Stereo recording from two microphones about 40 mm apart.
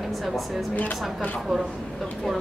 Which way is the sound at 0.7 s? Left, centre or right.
Left.